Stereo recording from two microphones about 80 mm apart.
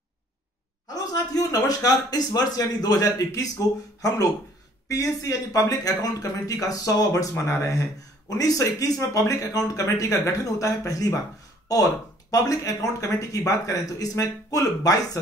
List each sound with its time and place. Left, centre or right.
0.8 s speech: left